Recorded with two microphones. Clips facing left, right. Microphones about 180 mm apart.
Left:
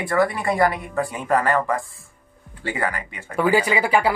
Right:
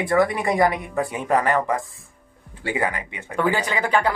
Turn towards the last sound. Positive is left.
turn(degrees=10)  # may be behind; listen again after turning